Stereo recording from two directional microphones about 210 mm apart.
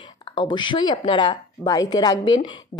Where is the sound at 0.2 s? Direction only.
20° left (ahead or behind).